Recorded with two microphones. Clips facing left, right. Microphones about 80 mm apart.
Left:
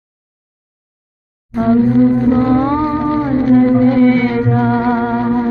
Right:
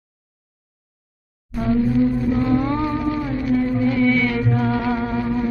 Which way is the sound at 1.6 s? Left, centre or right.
Left.